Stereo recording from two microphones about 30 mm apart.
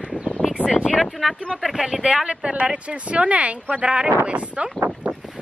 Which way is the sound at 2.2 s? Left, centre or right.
Right.